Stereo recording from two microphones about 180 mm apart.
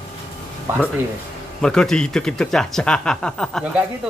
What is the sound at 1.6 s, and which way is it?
Speech, 5° left (ahead or behind).